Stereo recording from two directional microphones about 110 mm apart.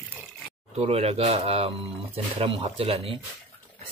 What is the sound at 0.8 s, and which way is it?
A man's voice, 70° right (ahead or behind).